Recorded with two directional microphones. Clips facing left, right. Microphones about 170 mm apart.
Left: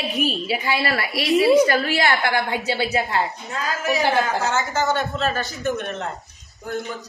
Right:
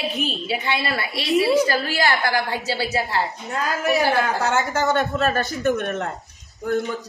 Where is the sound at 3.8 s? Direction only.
60° right (ahead or behind).